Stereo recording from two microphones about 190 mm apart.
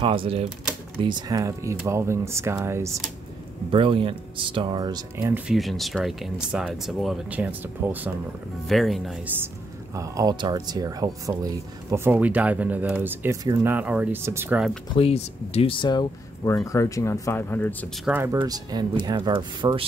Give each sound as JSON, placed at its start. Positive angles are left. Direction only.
{"t": 0.0, "sound": "speech", "side_deg": -30}
{"t": 3.7, "sound": "speech", "side_deg": -25}
{"t": 5.3, "sound": "speech", "side_deg": 0}
{"t": 9.9, "sound": "speech", "side_deg": -15}
{"t": 15.0, "sound": "speech", "side_deg": 30}
{"t": 18.0, "sound": "speech", "side_deg": -10}